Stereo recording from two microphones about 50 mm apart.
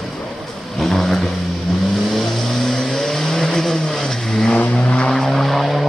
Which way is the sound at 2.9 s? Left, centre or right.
Centre.